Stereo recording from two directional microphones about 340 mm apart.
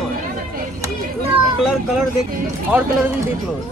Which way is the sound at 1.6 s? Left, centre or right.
Centre.